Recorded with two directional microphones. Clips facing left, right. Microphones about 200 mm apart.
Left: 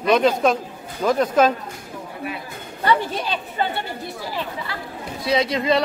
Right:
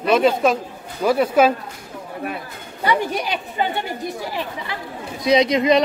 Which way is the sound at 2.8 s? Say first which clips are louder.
Even; 15° right (ahead or behind).